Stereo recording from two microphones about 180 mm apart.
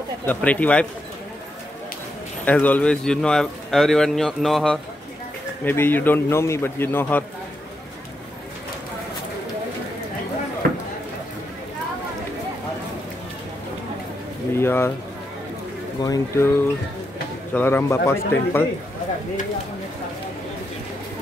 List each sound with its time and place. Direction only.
0.3 s a man's voice: 10° left (ahead or behind)
2.4 s a man's voice: 10° left (ahead or behind)
14.5 s speech: 15° left (ahead or behind)
16.0 s a man's voice: 15° left (ahead or behind)